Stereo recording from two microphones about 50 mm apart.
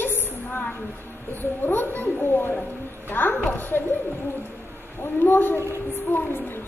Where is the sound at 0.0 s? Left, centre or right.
Left.